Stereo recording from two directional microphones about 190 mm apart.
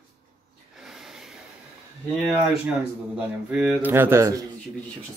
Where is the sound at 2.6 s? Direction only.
5° right (ahead or behind).